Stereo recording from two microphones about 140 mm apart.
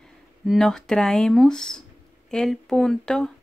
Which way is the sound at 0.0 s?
5° left (ahead or behind).